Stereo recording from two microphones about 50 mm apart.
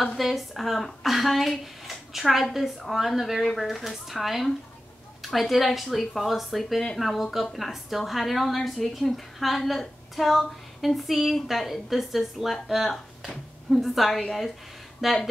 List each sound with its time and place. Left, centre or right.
0.2 s a woman's voice: centre